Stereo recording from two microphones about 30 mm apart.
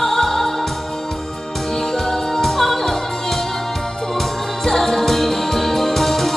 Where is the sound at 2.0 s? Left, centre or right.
Centre.